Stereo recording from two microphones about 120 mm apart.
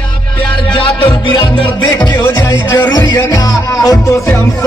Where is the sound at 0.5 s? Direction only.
45° left (ahead or behind).